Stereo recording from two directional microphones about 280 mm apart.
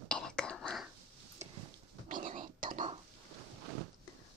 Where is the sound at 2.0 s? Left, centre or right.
Right.